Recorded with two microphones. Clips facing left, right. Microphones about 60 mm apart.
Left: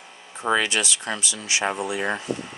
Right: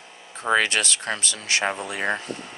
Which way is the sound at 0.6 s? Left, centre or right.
Right.